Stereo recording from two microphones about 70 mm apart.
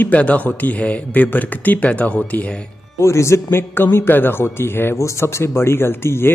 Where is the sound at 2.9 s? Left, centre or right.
Left.